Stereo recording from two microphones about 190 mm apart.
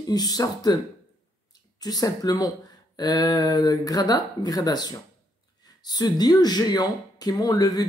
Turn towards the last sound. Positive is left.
turn(degrees=20)  # may be behind; listen again after turning